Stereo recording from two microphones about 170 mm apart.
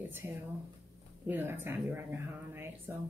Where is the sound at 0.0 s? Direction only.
10° right (ahead or behind).